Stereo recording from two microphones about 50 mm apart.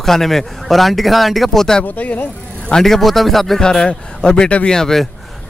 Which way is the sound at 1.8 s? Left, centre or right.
Left.